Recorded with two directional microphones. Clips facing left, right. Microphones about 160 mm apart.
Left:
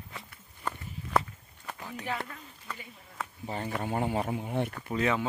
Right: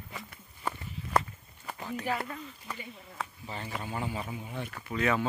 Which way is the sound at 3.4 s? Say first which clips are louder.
Left 8 dB; 50° left (ahead or behind).